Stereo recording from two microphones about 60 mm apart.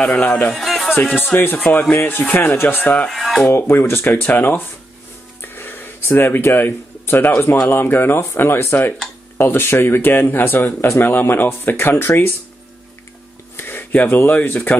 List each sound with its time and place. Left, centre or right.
0.0 s speech: left
0.6 s music: centre
0.9 s speech: left
3.1 s music: centre
3.4 s speech: left
5.4 s a sound: left
7.6 s speech: left
13.6 s speech: left